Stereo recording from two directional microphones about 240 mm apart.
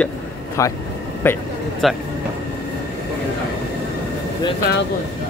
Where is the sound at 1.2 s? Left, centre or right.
Centre.